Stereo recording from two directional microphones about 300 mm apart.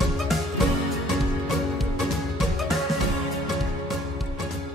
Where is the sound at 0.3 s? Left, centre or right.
Centre.